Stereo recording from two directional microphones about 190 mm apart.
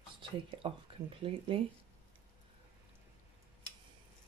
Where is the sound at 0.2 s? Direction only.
25° right (ahead or behind).